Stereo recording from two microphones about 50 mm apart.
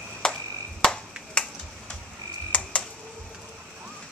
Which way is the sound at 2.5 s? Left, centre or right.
Left.